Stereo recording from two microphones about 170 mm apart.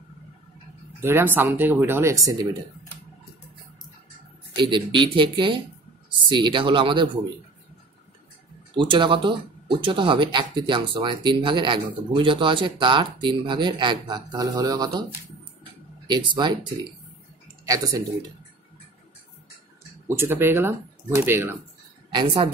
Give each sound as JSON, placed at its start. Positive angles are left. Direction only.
{"t": 1.0, "sound": "speech", "side_deg": -15}
{"t": 4.6, "sound": "speech", "side_deg": -25}
{"t": 8.7, "sound": "speech", "side_deg": -30}
{"t": 16.1, "sound": "speech", "side_deg": -25}
{"t": 20.1, "sound": "speech", "side_deg": -15}
{"t": 22.1, "sound": "speech", "side_deg": -30}